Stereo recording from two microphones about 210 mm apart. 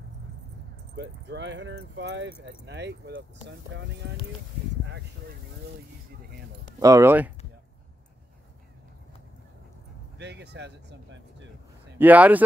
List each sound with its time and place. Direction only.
0.9 s speech: 60° right (ahead or behind)
6.8 s speech: 15° right (ahead or behind)
10.1 s speech: 55° right (ahead or behind)
12.0 s speech: 10° right (ahead or behind)